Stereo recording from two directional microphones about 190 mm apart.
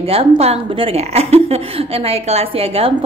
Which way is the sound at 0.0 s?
30° right (ahead or behind).